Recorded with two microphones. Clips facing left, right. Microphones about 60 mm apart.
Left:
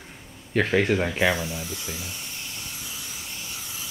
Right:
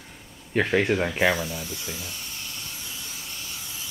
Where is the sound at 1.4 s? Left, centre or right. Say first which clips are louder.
Even; centre.